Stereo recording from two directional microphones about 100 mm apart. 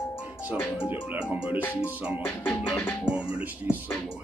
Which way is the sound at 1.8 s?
15° right (ahead or behind).